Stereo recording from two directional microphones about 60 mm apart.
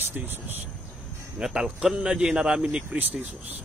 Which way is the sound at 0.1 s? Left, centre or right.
Right.